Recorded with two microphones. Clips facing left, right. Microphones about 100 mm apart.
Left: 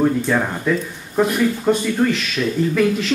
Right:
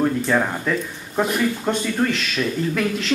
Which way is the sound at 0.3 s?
Centre (ahead or behind).